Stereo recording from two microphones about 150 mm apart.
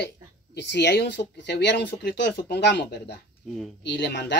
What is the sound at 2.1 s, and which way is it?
Speech, 90° left.